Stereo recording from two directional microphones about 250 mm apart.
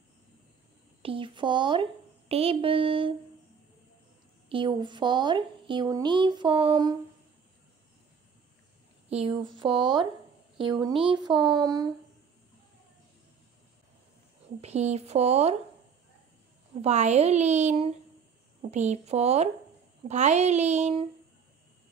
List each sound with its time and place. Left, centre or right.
1.0 s a woman's voice: right
4.5 s a woman's voice: centre
9.1 s speech: right
14.6 s a woman's voice: right
16.8 s a woman's voice: right